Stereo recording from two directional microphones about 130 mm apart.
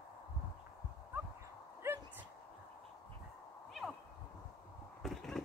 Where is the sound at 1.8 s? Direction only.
20° right (ahead or behind).